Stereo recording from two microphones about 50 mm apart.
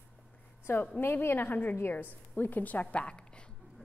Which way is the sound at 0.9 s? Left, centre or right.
Left.